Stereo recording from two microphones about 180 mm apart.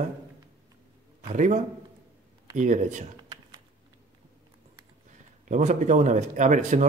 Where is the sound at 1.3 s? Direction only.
40° right (ahead or behind).